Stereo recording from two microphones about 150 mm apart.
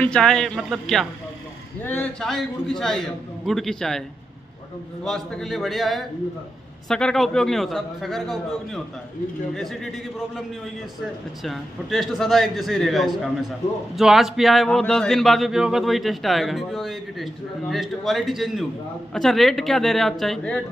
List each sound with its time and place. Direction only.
0.0 s speech: 5° left (ahead or behind)
1.8 s speech: 10° left (ahead or behind)
5.0 s speech: centre (ahead or behind)
11.4 s speech: centre (ahead or behind)